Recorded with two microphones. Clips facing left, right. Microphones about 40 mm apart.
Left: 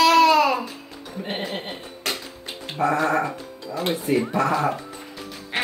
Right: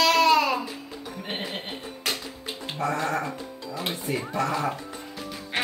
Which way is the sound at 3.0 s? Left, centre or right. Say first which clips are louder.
Left 6 dB; left.